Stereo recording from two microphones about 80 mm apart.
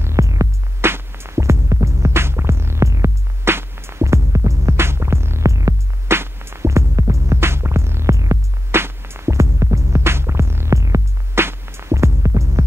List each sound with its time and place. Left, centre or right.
0.0 s music: right
0.8 s music: right
6.0 s music: right